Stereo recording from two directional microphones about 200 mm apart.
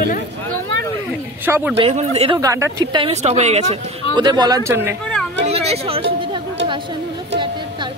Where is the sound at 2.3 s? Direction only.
15° right (ahead or behind); by 3.6 s 35° right (ahead or behind).